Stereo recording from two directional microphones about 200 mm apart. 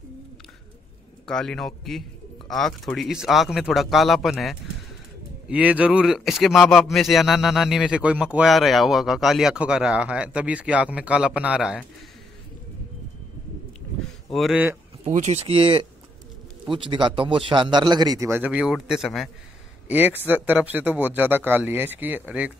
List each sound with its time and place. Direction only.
1.2 s speech: 5° left (ahead or behind)
14.3 s speech: 5° right (ahead or behind)
15.0 s a man's voice: 35° right (ahead or behind); by 22.5 s 5° right (ahead or behind)